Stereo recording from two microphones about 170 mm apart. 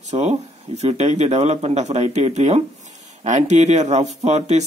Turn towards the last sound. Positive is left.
turn(degrees=-40)  # may be behind; listen again after turning